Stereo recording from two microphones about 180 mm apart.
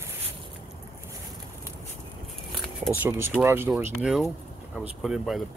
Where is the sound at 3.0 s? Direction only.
15° right (ahead or behind).